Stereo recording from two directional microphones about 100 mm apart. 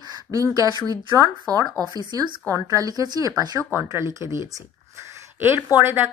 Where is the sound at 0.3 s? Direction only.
35° right (ahead or behind).